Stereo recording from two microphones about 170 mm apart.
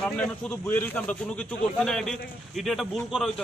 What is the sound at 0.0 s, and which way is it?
A man's voice, 10° left (ahead or behind).